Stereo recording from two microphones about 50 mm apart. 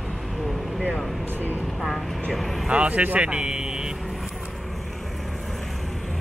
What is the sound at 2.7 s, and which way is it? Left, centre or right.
Speech, right.